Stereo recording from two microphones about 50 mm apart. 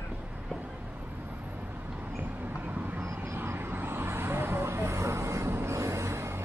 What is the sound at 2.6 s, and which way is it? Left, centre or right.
Vehicle, right.